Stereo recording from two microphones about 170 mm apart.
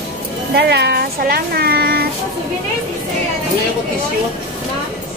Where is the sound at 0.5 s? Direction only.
75° right (ahead or behind).